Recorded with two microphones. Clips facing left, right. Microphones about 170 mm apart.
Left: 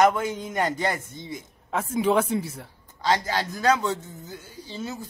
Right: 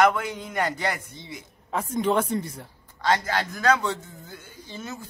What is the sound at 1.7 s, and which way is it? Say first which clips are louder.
A man's voice: left 1 dB; 5° left (ahead or behind).